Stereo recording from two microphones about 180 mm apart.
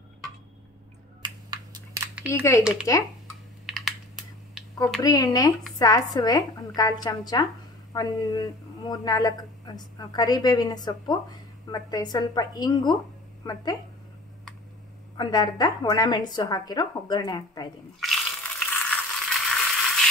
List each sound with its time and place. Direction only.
1.2 s computer keyboard: 25° right (ahead or behind)
2.2 s a woman's voice: 15° left (ahead or behind)
3.6 s computer keyboard: centre (ahead or behind)
5.0 s a woman's voice: 20° left (ahead or behind)
15.1 s a woman's voice: 20° left (ahead or behind)
18.0 s a sound: 5° left (ahead or behind)